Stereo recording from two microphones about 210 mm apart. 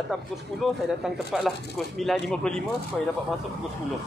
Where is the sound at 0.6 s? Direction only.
Centre (ahead or behind).